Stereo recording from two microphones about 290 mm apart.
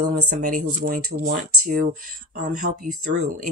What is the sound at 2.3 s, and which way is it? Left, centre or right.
Speech, right.